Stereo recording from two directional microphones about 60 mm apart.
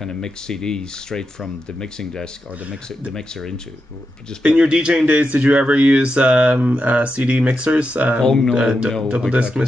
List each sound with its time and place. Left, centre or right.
0.0 s speech: centre
2.6 s speech: right
3.1 s speech: centre
4.4 s speech: centre
8.2 s speech: centre
8.5 s speech: centre